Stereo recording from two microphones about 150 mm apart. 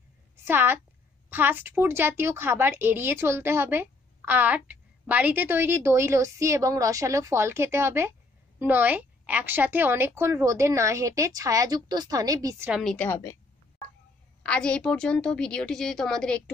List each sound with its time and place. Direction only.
0.5 s a woman's voice: 15° right (ahead or behind)
12.9 s a woman's voice: 15° left (ahead or behind)
14.4 s a woman's voice: 5° left (ahead or behind)